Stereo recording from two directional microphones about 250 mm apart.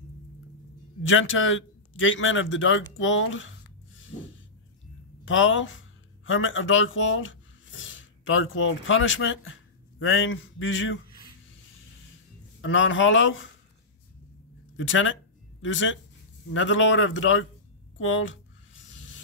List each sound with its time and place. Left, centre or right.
1.0 s a man's voice: left
12.6 s a man's voice: left
14.8 s a man's voice: left
17.9 s a sound: left